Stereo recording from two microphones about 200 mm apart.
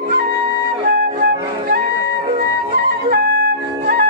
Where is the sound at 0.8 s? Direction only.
50° right (ahead or behind).